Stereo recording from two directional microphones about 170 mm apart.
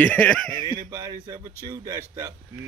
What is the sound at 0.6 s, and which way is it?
Speech, 25° right (ahead or behind).